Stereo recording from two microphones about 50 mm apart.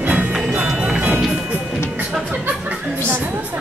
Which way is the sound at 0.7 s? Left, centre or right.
Centre.